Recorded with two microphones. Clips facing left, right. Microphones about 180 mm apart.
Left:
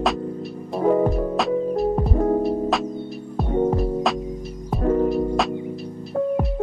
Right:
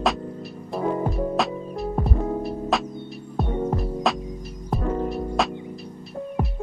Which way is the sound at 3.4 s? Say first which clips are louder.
Left 5 dB; centre (ahead or behind).